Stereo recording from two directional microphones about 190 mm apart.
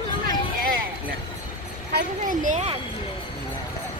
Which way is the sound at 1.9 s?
45° right (ahead or behind).